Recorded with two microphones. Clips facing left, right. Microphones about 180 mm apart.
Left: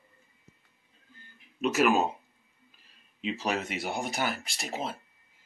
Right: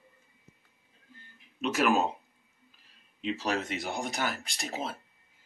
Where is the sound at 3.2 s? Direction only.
Centre (ahead or behind).